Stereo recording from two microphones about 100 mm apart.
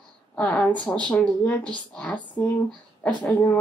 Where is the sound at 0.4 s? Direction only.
10° left (ahead or behind).